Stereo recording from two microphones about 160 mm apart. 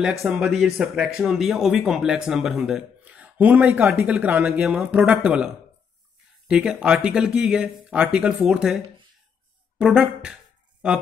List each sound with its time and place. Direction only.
0.2 s speech: centre (ahead or behind)